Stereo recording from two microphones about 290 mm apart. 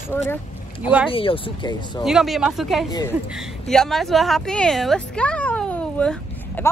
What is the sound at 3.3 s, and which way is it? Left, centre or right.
Speech, centre.